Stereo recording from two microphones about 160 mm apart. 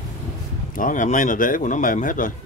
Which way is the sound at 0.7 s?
55° left (ahead or behind).